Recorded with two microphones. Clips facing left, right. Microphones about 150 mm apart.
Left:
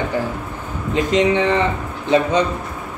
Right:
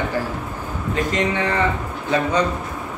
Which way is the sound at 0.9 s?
20° left (ahead or behind).